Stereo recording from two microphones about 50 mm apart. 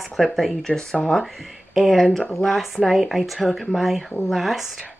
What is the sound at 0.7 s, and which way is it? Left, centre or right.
Speech, centre.